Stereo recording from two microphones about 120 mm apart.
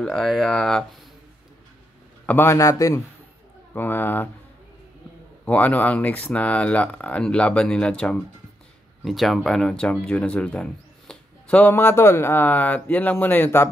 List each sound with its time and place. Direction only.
0.0 s speech: 5° left (ahead or behind)
2.2 s a man's voice: 20° left (ahead or behind)
3.7 s speech: 15° left (ahead or behind)
5.4 s speech: 10° left (ahead or behind)